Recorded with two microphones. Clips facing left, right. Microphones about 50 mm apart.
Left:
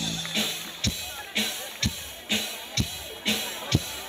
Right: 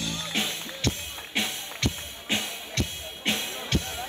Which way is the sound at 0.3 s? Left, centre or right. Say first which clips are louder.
Right 1 dB; right.